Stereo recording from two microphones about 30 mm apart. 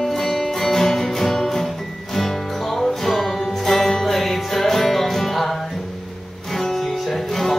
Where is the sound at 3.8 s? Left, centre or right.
Centre.